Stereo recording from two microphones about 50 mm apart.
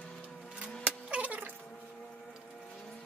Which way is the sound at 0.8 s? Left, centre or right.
Right.